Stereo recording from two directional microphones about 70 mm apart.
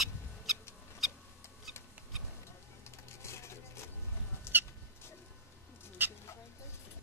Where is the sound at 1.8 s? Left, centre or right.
Left.